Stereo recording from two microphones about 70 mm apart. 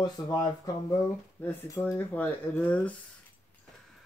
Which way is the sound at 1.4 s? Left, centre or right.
Left.